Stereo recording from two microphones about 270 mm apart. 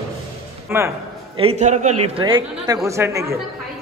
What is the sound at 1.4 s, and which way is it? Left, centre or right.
A man's voice, right.